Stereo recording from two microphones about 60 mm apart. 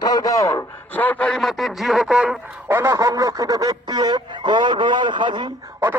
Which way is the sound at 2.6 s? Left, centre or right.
Right.